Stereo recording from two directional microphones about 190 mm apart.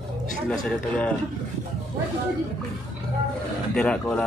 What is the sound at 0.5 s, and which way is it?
Speech, 5° left (ahead or behind).